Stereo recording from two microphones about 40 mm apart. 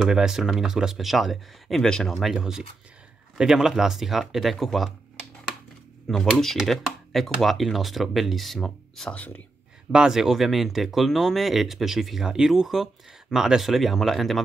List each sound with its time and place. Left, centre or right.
0.1 s speech: centre
1.8 s speech: centre
2.3 s speech: centre
6.0 s speech: centre
7.1 s speech: centre
9.1 s speech: left
9.9 s speech: centre